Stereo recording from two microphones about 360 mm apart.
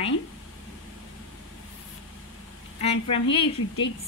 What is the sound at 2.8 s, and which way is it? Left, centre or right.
A woman's voice, centre.